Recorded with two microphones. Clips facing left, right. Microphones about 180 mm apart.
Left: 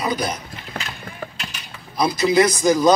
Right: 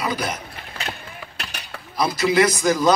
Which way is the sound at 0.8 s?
55° left (ahead or behind).